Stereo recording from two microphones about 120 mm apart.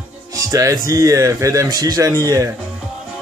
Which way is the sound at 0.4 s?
30° right (ahead or behind).